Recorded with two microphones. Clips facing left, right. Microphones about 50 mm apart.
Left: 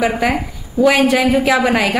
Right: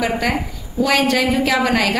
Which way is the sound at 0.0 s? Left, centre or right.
Centre.